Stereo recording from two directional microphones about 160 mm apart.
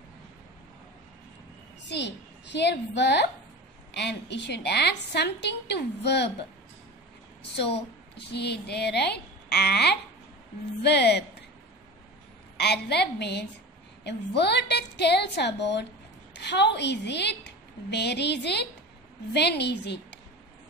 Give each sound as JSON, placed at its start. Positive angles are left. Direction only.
{"t": 1.9, "sound": "a woman's voice", "side_deg": 90}
{"t": 8.3, "sound": "a woman's voice", "side_deg": 90}
{"t": 12.5, "sound": "a woman's voice", "side_deg": 90}